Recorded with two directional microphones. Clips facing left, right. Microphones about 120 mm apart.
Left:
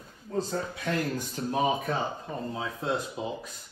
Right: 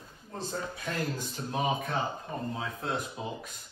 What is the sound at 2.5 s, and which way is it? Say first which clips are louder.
Speech: left 5 dB; 25° left (ahead or behind).